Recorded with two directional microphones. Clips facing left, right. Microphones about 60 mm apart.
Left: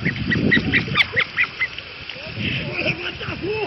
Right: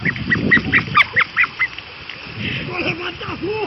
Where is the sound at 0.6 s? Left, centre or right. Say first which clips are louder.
Right 4 dB; right.